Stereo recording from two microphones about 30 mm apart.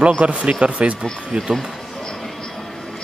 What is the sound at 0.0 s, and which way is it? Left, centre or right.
Speech, right.